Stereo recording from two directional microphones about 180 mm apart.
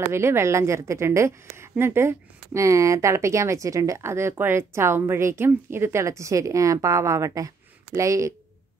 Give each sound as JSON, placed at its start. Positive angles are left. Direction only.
{"t": 0.0, "sound": "a woman's voice", "side_deg": -15}